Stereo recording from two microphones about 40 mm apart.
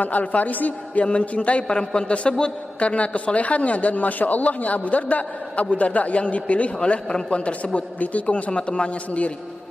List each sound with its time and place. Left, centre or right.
0.0 s a man's voice: left
1.0 s a man's voice: left
6.8 s a man's voice: left